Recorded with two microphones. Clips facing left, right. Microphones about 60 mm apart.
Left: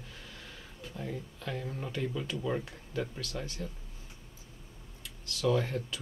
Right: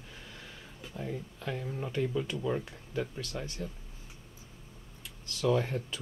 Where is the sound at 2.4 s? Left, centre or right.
Centre.